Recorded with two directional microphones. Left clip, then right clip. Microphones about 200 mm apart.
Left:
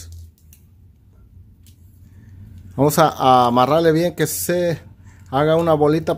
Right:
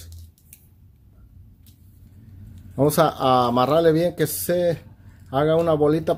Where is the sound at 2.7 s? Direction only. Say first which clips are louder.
Left 3 dB; 15° left (ahead or behind).